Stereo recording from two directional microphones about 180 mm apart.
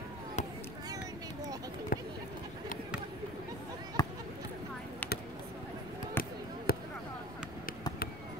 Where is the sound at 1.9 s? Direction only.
55° left (ahead or behind).